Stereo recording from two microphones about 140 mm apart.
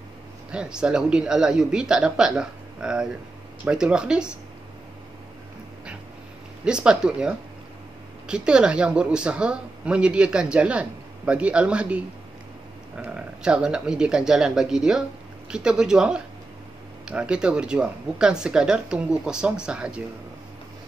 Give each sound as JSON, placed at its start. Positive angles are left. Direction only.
{"t": 0.5, "sound": "speech", "side_deg": -5}
{"t": 6.6, "sound": "speech", "side_deg": -5}
{"t": 13.0, "sound": "speech", "side_deg": -10}